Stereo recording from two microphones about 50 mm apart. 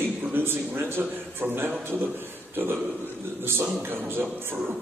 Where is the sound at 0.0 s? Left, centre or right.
Right.